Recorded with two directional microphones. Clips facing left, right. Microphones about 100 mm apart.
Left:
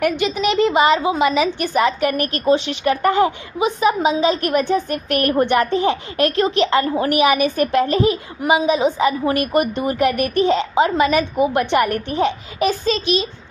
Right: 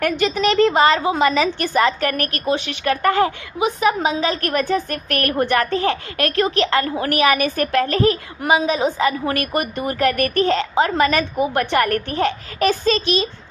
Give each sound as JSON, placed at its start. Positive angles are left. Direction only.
{"t": 0.0, "sound": "a woman's voice", "side_deg": 15}
{"t": 2.3, "sound": "a woman's voice", "side_deg": 30}